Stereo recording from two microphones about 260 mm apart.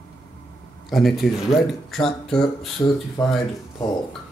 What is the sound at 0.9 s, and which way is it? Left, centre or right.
Speech, centre.